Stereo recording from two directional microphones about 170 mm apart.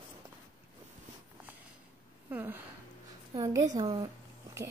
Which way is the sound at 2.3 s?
10° right (ahead or behind).